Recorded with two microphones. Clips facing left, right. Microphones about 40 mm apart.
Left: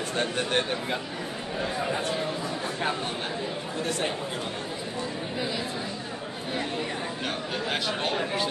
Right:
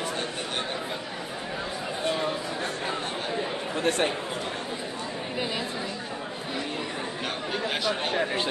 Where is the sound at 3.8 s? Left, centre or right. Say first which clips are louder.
Right 5 dB; right.